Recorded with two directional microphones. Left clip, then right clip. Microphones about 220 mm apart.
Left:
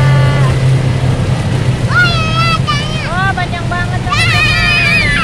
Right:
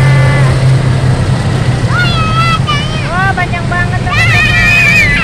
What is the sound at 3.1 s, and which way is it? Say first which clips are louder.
Vehicle: right 3 dB; 10° left (ahead or behind).